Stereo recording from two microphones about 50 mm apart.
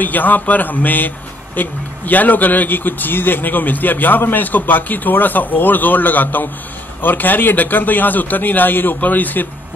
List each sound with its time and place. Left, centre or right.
0.0 s a man's voice: left